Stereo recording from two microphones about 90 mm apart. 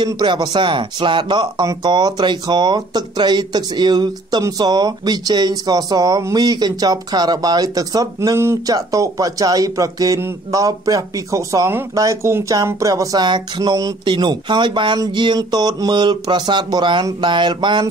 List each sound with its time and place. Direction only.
0.0 s speech: 55° right (ahead or behind); by 13.2 s 40° right (ahead or behind)
13.2 s speech: 55° right (ahead or behind)
14.0 s speech: 55° right (ahead or behind)